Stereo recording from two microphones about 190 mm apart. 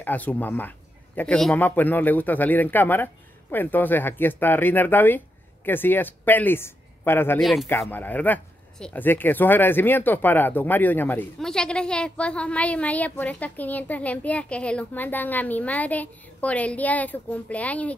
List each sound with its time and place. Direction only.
0.0 s speech: 10° left (ahead or behind)